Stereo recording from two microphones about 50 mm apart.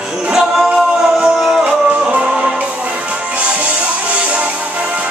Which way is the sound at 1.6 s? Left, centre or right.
Right.